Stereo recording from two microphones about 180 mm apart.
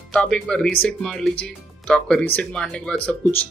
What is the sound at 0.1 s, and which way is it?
Speech, 5° left (ahead or behind).